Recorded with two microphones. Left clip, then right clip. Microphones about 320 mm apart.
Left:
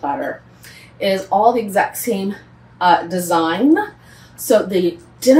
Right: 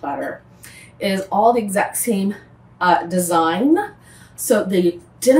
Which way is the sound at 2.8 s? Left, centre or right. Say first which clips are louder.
Left 2 dB; centre.